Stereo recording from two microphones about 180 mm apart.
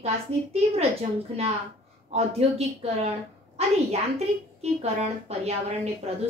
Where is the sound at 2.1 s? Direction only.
35° right (ahead or behind).